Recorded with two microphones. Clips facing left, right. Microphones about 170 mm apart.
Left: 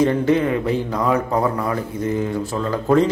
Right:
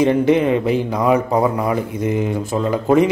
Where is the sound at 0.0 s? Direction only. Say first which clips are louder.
Right 3 dB; 15° right (ahead or behind).